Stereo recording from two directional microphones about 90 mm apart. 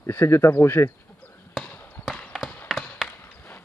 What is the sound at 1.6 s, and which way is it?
Basketball bounce, 20° left (ahead or behind).